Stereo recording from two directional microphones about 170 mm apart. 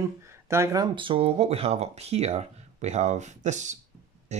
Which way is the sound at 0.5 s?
15° right (ahead or behind).